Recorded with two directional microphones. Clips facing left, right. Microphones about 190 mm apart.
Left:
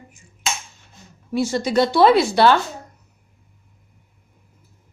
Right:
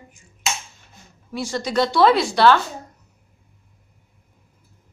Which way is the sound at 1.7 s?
25° left (ahead or behind).